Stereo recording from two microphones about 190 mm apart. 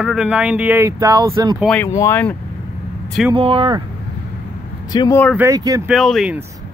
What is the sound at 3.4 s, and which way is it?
Speech, 30° right (ahead or behind).